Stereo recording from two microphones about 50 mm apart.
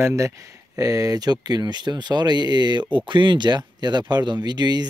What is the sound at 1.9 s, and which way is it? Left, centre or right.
Speech, right.